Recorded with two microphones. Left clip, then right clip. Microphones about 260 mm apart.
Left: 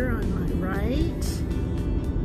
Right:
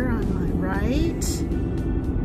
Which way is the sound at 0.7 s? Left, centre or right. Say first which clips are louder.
Right 3 dB; centre.